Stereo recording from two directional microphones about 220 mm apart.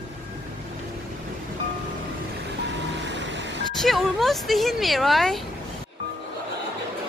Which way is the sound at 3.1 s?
55° right (ahead or behind).